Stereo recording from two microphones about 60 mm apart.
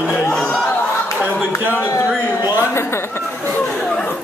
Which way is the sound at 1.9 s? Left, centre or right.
Left.